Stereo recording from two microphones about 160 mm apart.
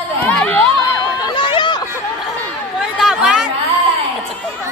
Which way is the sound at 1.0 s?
30° left (ahead or behind).